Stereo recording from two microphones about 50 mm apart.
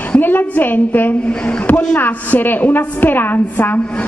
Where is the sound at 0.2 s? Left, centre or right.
Left.